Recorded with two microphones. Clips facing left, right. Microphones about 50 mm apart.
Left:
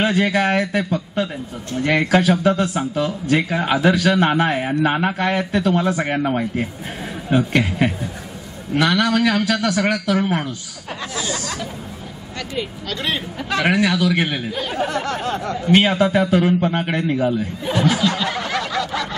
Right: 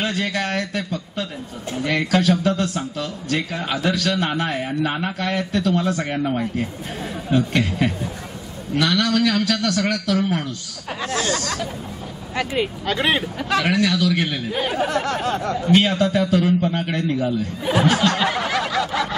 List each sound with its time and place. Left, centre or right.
0.0 s speech: centre
10.9 s speech: centre
12.4 s speech: centre
13.4 s speech: centre
13.7 s speech: left
14.7 s speech: centre
15.9 s speech: centre
17.6 s snicker: centre